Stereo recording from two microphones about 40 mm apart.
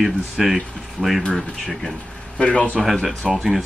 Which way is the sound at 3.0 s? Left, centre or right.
Centre.